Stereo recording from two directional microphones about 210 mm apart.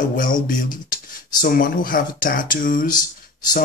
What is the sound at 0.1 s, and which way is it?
Speech, 40° left (ahead or behind).